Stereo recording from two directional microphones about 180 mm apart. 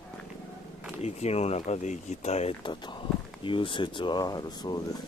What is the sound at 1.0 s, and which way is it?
Speech, 35° left (ahead or behind).